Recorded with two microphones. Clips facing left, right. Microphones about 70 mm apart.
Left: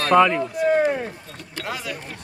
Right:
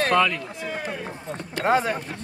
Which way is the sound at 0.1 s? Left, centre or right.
Left.